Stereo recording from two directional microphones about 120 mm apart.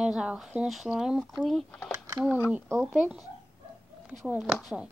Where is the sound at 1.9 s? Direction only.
25° right (ahead or behind).